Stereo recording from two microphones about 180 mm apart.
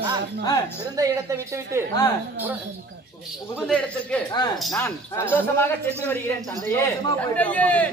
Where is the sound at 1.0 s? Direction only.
15° right (ahead or behind).